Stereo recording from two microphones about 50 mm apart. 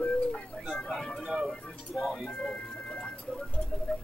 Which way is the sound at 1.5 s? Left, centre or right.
Centre.